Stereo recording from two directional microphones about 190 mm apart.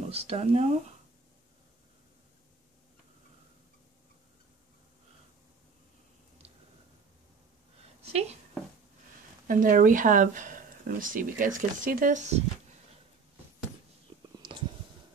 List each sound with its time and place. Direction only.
0.1 s speech: 30° right (ahead or behind)
8.0 s speech: 35° right (ahead or behind)
9.5 s speech: 45° right (ahead or behind)